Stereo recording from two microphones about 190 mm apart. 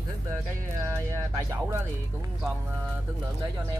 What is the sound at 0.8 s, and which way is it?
Music, 15° right (ahead or behind).